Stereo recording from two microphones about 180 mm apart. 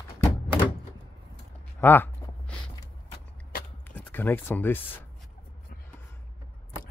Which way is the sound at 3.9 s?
10° left (ahead or behind).